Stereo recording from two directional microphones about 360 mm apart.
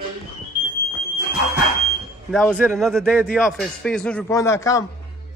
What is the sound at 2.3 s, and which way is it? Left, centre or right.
A man's voice, centre.